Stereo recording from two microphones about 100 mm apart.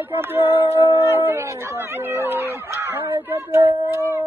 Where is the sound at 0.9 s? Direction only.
20° right (ahead or behind).